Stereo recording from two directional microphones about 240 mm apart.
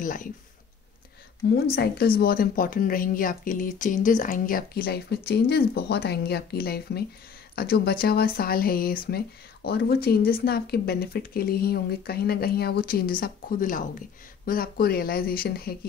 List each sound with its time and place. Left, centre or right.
0.0 s speech: left
1.8 s speech: left